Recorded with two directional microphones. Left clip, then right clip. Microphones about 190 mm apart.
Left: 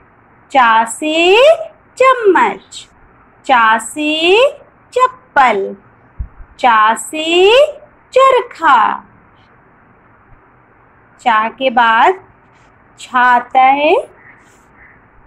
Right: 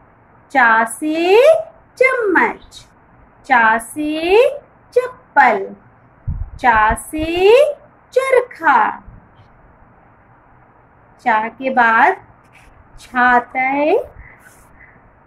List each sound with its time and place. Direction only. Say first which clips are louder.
0.5 s a woman's voice: left 3 dB; 10° left (ahead or behind)
6.6 s a woman's voice: left 3 dB; 10° left (ahead or behind)
11.2 s a woman's voice: left 4 dB; 10° left (ahead or behind)